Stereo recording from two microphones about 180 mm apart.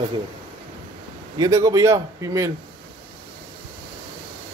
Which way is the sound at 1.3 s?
20° right (ahead or behind).